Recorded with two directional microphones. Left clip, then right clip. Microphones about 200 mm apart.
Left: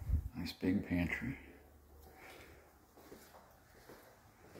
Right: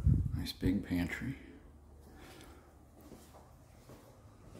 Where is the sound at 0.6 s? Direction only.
15° right (ahead or behind).